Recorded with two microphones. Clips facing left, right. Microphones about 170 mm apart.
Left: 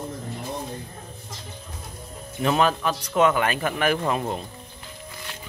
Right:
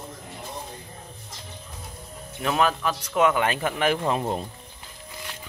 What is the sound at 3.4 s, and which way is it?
Speech, 20° right (ahead or behind).